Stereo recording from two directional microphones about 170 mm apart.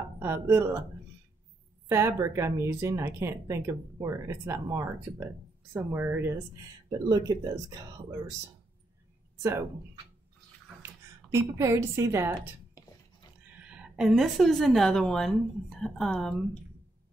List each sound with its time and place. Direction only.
0.2 s speech: 15° right (ahead or behind)
1.9 s speech: 15° right (ahead or behind)
6.9 s speech: 25° right (ahead or behind)
9.4 s speech: 15° right (ahead or behind)
10.8 s a woman's voice: 15° right (ahead or behind)
13.6 s a woman's voice: 5° right (ahead or behind)